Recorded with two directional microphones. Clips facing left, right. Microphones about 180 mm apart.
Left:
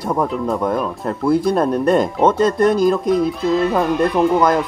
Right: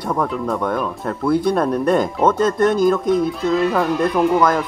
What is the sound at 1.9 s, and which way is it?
Speech, centre (ahead or behind).